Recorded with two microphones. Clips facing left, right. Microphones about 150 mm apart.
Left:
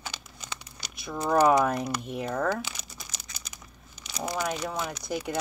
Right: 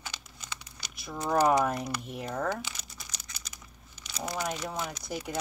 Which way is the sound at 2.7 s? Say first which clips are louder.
Left 3 dB; 5° left (ahead or behind).